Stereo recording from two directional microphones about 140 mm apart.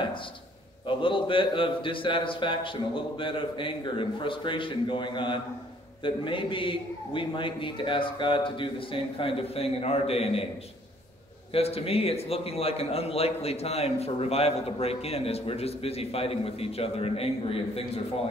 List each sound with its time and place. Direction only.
0.0 s a man's voice: 35° left (ahead or behind)
11.5 s a man's voice: 45° left (ahead or behind)